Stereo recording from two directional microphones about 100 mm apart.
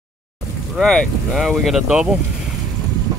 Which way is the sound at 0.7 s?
5° left (ahead or behind).